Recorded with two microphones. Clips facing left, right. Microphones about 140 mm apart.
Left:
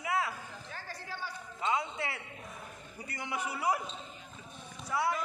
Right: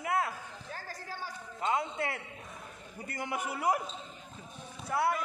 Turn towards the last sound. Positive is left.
turn(degrees=-55)  # may be behind; listen again after turning